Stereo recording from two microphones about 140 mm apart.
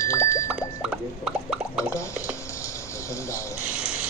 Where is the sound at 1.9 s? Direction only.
20° left (ahead or behind).